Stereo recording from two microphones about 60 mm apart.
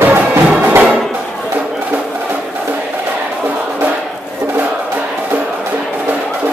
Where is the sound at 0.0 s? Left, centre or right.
Right.